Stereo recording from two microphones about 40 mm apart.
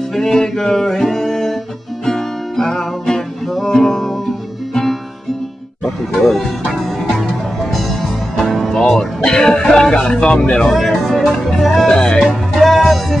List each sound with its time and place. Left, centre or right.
0.1 s music: centre
6.2 s music: centre
8.4 s music: centre; by 10.7 s left
11.1 s music: centre
11.9 s music: left
12.2 s music: centre